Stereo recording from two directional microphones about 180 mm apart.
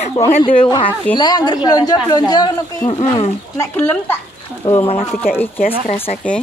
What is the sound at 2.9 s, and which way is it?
Speech, 35° left (ahead or behind).